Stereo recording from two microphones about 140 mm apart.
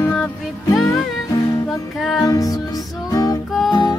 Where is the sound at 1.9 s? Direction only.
5° left (ahead or behind).